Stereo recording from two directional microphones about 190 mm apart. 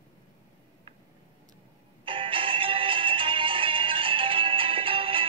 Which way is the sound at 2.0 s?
30° right (ahead or behind).